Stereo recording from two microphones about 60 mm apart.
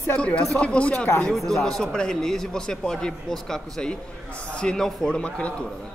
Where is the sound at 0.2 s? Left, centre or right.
Centre.